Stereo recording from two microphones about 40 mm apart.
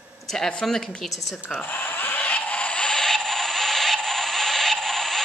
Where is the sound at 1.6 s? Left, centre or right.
Left.